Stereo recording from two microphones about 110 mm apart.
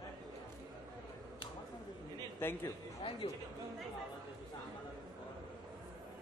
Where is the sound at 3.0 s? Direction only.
50° left (ahead or behind).